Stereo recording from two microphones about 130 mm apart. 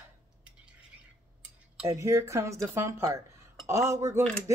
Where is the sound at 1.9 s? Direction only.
25° right (ahead or behind).